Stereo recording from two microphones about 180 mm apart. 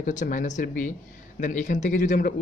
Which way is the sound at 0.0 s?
45° left (ahead or behind).